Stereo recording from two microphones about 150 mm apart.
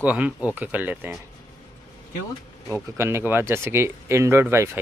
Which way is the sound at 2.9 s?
15° right (ahead or behind).